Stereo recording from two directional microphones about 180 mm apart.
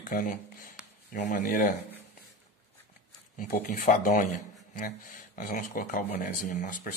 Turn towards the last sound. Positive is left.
turn(degrees=45)  # may be behind; listen again after turning